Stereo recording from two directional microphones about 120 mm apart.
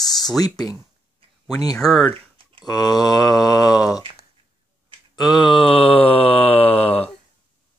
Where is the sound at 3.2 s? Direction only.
Centre (ahead or behind).